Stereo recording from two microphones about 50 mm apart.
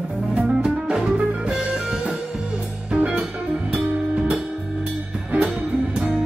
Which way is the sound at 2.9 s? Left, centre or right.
Right.